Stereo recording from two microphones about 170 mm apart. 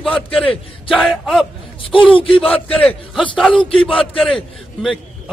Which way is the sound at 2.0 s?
30° left (ahead or behind).